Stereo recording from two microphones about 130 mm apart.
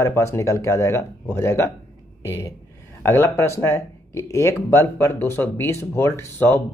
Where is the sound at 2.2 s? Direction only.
20° left (ahead or behind).